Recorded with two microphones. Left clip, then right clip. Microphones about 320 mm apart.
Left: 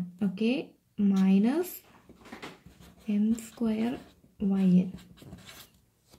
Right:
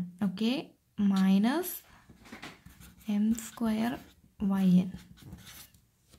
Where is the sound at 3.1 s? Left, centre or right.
Right.